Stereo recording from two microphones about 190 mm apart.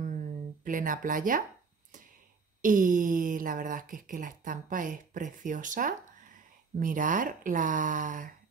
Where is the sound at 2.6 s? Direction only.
45° right (ahead or behind).